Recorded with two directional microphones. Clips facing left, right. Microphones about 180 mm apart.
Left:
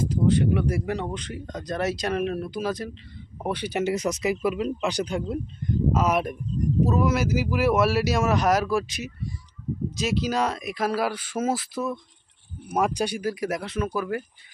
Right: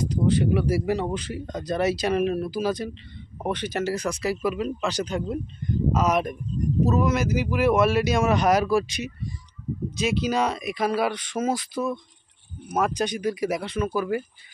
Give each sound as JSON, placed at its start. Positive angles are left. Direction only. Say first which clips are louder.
{"t": 0.1, "sound": "speech", "louder": "even", "side_deg": 0}